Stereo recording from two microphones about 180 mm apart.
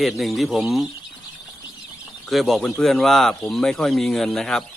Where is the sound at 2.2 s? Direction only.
Centre (ahead or behind).